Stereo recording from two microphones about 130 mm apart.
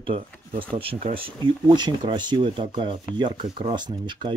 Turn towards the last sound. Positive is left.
turn(degrees=-35)  # may be behind; listen again after turning